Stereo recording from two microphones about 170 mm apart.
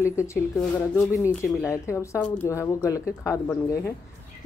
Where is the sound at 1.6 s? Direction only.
15° left (ahead or behind).